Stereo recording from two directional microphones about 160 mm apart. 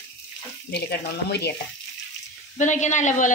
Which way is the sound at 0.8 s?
90° left.